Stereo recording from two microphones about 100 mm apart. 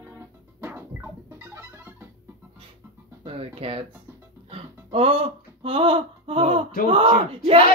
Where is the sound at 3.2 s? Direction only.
75° right (ahead or behind).